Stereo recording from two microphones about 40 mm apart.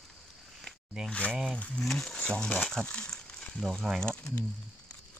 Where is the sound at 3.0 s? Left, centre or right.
Centre.